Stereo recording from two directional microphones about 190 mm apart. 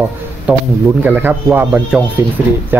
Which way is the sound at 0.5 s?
10° right (ahead or behind).